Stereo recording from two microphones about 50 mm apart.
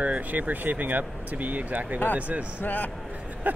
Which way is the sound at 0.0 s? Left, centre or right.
Right.